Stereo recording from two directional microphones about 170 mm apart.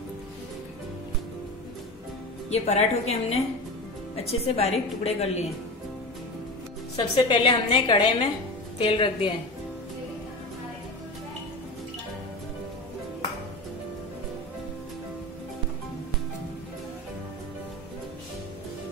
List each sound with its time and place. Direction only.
2.5 s speech: 40° left (ahead or behind)
7.0 s a woman's voice: 25° left (ahead or behind)